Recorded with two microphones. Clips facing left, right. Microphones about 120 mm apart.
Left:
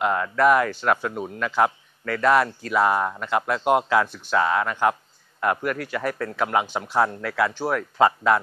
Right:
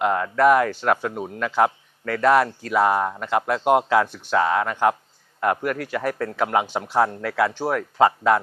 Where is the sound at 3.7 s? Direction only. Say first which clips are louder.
Right 2 dB; 45° right (ahead or behind).